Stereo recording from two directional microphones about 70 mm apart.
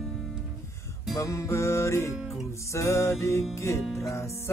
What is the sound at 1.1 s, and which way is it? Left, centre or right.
Music, left.